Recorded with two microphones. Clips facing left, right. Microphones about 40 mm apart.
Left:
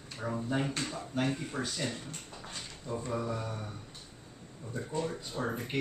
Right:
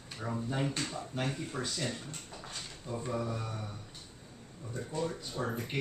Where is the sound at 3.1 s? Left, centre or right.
Centre.